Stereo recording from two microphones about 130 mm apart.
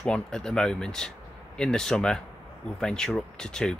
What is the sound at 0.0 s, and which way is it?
Speech, 5° left (ahead or behind).